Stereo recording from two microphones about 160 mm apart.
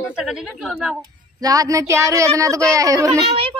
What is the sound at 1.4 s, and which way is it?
Speech, 20° right (ahead or behind).